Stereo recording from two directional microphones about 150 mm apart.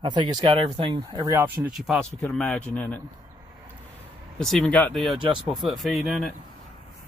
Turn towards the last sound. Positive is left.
turn(degrees=0)  # may be behind; listen again after turning